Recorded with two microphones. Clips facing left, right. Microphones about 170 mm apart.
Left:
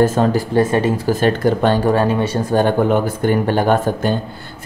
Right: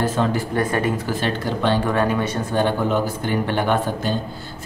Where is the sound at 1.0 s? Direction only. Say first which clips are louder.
Left 8 dB; 45° left (ahead or behind).